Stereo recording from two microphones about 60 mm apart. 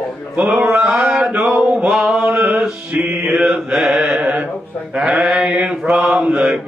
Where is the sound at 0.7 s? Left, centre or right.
Centre.